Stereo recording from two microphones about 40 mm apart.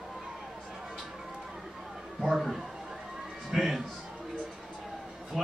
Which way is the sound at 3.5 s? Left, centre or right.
Right.